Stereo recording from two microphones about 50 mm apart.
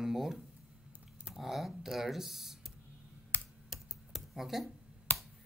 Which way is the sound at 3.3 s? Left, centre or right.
Left.